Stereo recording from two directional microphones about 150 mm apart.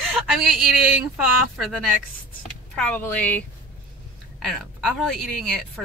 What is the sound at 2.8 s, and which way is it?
Speech, 10° left (ahead or behind).